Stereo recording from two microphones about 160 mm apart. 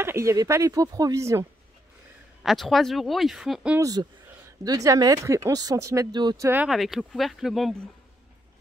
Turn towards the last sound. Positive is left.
turn(degrees=0)  # may be behind; listen again after turning